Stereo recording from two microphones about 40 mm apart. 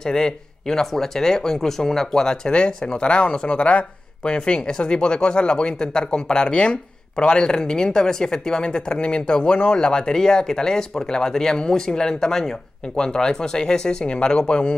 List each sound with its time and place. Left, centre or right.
0.0 s speech: centre